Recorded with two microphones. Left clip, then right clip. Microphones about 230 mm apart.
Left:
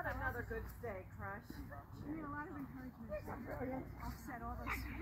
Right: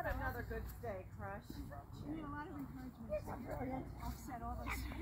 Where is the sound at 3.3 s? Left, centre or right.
Right.